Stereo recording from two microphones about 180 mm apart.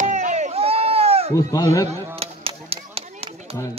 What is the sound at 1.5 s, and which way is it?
Speech, 20° left (ahead or behind).